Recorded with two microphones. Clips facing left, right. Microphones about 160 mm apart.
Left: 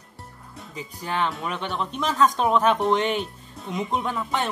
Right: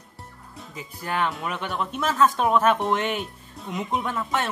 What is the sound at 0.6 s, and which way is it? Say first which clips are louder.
Speech: left 2 dB; 5° right (ahead or behind).